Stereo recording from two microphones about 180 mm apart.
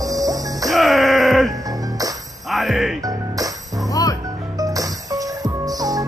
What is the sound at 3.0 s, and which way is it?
Music, 20° right (ahead or behind).